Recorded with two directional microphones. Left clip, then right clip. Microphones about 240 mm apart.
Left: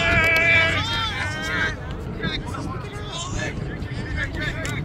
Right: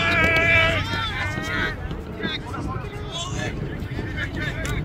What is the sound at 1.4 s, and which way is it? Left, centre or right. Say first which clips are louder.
Vehicle: left 1 dB; centre.